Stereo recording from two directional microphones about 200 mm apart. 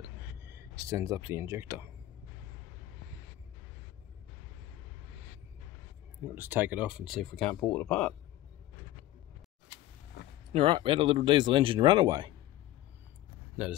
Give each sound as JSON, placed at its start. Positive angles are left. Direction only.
{"t": 0.6, "sound": "speech", "side_deg": -15}
{"t": 6.2, "sound": "speech", "side_deg": -10}
{"t": 10.5, "sound": "speech", "side_deg": -25}